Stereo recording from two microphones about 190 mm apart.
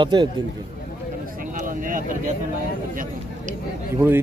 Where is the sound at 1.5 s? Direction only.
45° right (ahead or behind).